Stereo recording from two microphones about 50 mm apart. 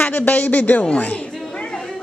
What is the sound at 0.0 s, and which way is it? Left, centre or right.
A man's voice, left.